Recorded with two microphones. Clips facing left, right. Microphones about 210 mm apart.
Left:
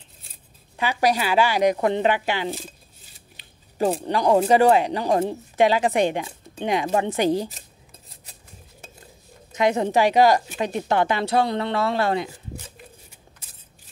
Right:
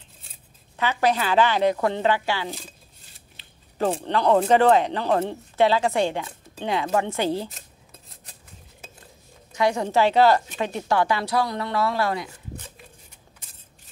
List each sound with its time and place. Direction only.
0.7 s speech: 15° left (ahead or behind)
3.9 s speech: 10° left (ahead or behind)
9.5 s a woman's voice: 20° left (ahead or behind)